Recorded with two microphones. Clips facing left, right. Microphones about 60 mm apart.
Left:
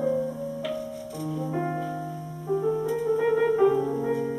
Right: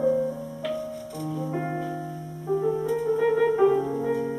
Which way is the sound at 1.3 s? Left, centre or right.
Centre.